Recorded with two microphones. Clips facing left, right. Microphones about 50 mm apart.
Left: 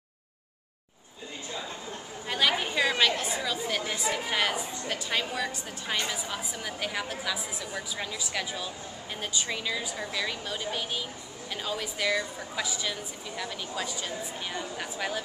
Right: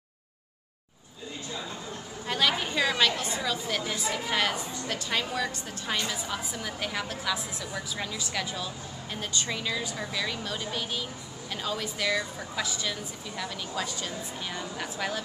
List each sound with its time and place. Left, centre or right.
2.2 s chatter: centre
4.1 s a woman's voice: centre